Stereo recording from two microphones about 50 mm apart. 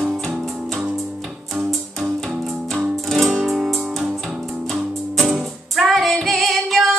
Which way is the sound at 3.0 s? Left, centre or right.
Centre.